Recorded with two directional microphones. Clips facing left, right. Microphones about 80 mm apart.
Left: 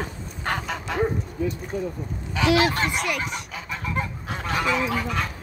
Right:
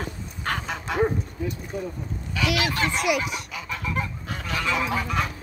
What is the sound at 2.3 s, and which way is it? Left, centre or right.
Goose, left.